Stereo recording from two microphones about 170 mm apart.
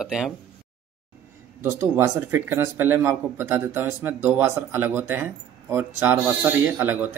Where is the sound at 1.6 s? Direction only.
15° right (ahead or behind).